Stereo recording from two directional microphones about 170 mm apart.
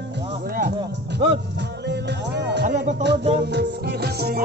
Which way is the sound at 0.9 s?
85° right.